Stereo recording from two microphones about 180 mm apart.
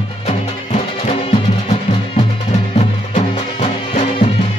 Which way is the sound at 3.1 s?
35° left (ahead or behind).